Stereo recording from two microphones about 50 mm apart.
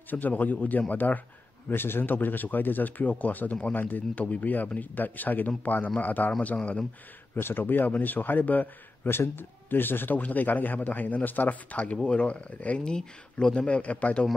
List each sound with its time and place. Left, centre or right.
0.1 s a man's voice: left
1.7 s a man's voice: left
7.3 s a man's voice: left
9.0 s a man's voice: left